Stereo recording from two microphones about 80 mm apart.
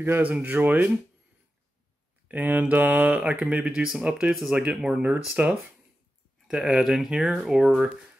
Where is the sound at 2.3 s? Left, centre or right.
Right.